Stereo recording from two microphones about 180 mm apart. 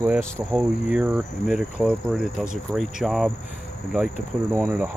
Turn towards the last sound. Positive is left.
turn(degrees=-15)  # may be behind; listen again after turning